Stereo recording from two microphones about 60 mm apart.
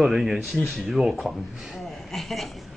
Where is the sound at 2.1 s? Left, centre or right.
Centre.